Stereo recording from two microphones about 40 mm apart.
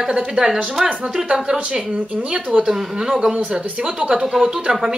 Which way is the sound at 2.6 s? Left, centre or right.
Centre.